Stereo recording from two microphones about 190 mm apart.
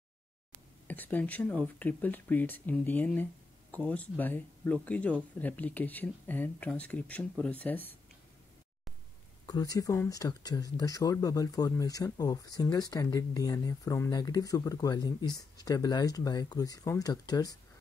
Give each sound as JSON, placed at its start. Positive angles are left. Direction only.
{"t": 0.8, "sound": "speech", "side_deg": 10}
{"t": 9.5, "sound": "speech", "side_deg": 20}